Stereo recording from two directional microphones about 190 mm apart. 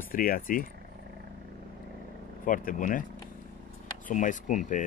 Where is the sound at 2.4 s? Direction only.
45° left (ahead or behind).